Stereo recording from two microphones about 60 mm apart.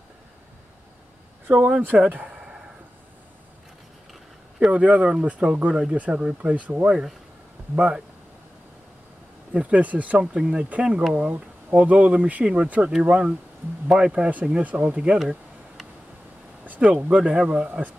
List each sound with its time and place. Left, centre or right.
1.5 s speech: right
4.6 s speech: right
9.5 s speech: right
16.6 s speech: right
17.0 s speech: centre